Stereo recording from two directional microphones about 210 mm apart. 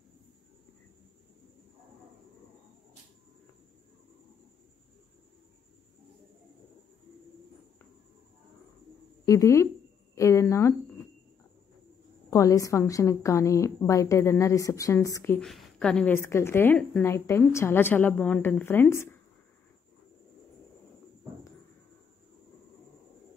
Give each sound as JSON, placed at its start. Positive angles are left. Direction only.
{"t": 9.2, "sound": "a woman's voice", "side_deg": 15}
{"t": 12.3, "sound": "a woman's voice", "side_deg": 15}